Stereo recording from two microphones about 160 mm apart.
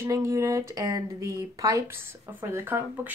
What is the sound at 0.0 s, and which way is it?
Speech, 20° right (ahead or behind).